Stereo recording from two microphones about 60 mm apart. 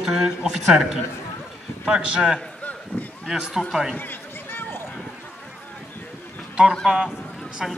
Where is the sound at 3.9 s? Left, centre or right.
Left.